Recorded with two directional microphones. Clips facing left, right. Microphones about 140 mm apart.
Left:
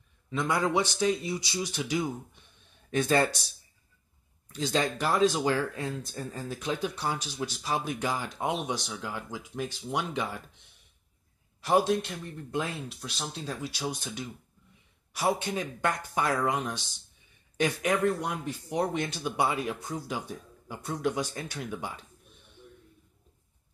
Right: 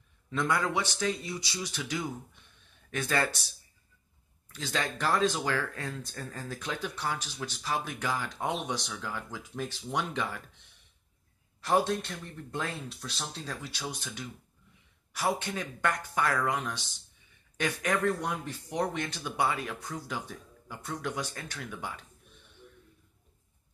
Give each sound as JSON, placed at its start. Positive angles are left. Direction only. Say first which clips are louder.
{"t": 0.5, "sound": "speech", "louder": "left 4 dB", "side_deg": 20}
{"t": 4.5, "sound": "speech", "louder": "left 5 dB", "side_deg": 20}
{"t": 4.9, "sound": "speech", "louder": "even", "side_deg": 10}
{"t": 9.7, "sound": "a man's voice", "louder": "even", "side_deg": 0}
{"t": 11.6, "sound": "speech", "louder": "left 3 dB", "side_deg": 10}
{"t": 17.9, "sound": "a man's voice", "louder": "left 2 dB", "side_deg": 5}